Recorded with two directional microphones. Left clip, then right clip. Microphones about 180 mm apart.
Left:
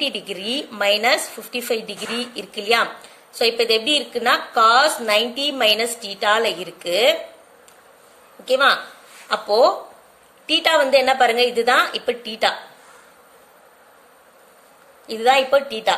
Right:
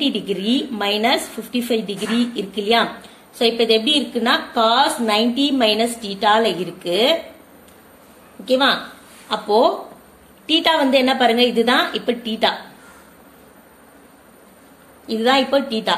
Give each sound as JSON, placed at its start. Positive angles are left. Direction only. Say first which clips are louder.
{"t": 0.3, "sound": "a woman's voice", "louder": "right 4 dB", "side_deg": 40}
{"t": 8.5, "sound": "a woman's voice", "louder": "even", "side_deg": 35}
{"t": 15.0, "sound": "a woman's voice", "louder": "left 1 dB", "side_deg": 35}